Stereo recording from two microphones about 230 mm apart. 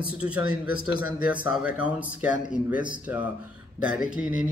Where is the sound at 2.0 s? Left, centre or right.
Centre.